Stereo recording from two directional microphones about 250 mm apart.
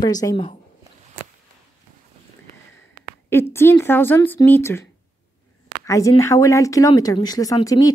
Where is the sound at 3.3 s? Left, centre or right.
Centre.